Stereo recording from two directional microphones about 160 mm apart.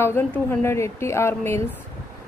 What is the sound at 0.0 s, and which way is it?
Speech, 15° left (ahead or behind).